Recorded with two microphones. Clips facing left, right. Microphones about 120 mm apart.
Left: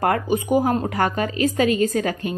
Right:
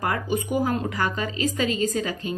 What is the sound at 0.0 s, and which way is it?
A woman's voice, 50° left (ahead or behind).